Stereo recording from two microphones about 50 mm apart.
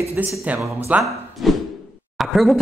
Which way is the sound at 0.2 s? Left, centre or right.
Right.